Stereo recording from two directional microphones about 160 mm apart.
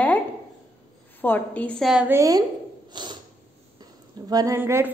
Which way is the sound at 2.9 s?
30° right (ahead or behind).